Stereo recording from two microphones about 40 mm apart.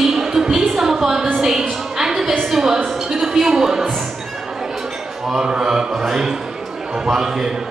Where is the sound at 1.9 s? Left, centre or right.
Centre.